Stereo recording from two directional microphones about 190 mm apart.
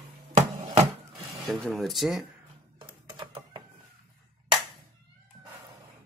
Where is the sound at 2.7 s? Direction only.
25° right (ahead or behind).